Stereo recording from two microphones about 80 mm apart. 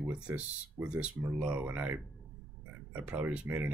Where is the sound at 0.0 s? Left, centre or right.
Right.